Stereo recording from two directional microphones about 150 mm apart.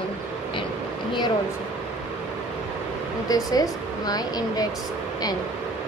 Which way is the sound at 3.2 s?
25° left (ahead or behind).